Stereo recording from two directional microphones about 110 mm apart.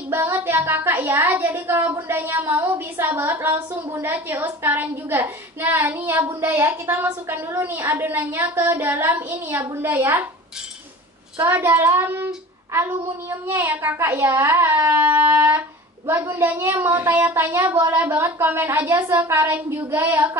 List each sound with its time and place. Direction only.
0.1 s a woman's voice: 20° right (ahead or behind)
11.3 s a woman's voice: 20° right (ahead or behind)